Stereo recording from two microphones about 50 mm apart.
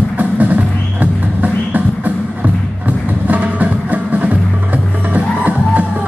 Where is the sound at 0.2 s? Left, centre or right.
Right.